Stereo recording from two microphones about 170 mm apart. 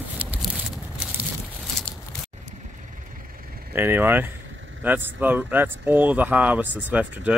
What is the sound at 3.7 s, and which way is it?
Speech, 10° right (ahead or behind).